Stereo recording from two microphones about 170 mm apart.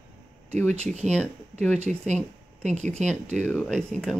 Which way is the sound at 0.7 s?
40° right (ahead or behind).